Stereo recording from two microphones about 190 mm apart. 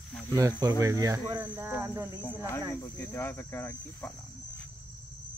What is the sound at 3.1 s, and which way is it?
Cricket, 10° left (ahead or behind).